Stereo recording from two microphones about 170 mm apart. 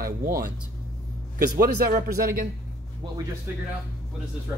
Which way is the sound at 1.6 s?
60° right (ahead or behind).